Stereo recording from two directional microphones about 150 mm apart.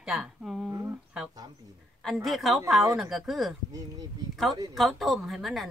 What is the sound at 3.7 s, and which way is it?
Speech, 25° right (ahead or behind).